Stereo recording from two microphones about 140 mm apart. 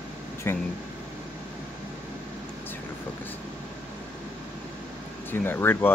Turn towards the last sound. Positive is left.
turn(degrees=15)  # may be behind; listen again after turning